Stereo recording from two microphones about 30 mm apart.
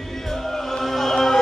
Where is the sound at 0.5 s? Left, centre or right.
Centre.